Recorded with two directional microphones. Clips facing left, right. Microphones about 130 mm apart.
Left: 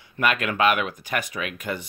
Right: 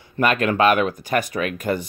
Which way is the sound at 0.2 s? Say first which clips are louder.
Right 4 dB; 35° right (ahead or behind).